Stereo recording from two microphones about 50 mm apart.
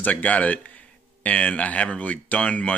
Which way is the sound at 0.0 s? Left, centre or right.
Left.